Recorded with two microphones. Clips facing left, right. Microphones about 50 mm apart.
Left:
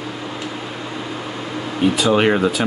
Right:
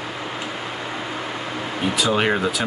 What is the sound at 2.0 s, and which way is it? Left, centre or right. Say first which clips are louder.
Speech: left 3 dB; centre.